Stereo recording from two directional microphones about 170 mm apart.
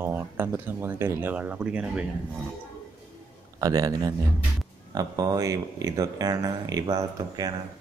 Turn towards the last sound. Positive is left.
turn(degrees=-20)  # may be behind; listen again after turning